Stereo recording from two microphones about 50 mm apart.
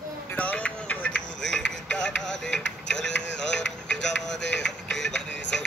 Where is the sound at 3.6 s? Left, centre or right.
Centre.